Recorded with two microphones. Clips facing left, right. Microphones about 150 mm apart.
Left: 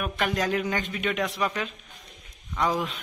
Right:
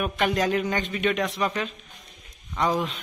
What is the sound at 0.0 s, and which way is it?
A man's voice, 5° right (ahead or behind).